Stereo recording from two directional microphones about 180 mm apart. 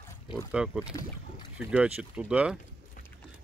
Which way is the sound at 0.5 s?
5° right (ahead or behind).